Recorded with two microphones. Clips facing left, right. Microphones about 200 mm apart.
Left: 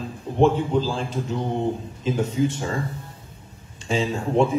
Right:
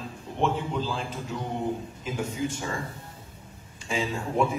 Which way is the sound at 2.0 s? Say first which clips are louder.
Left 8 dB; 25° left (ahead or behind).